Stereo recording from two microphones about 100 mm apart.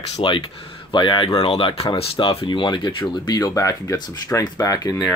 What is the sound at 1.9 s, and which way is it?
Speech, 60° left (ahead or behind).